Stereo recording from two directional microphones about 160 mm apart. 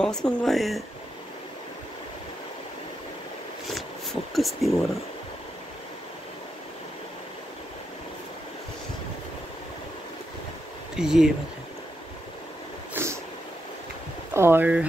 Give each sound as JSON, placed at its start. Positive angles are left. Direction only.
{"t": 0.0, "sound": "speech", "side_deg": 5}
{"t": 3.7, "sound": "speech", "side_deg": 0}
{"t": 11.0, "sound": "speech", "side_deg": -5}
{"t": 12.9, "sound": "a sound", "side_deg": -15}
{"t": 14.3, "sound": "speech", "side_deg": -15}